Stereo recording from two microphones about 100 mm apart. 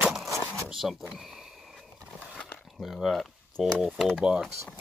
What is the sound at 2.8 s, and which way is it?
Speech, centre (ahead or behind).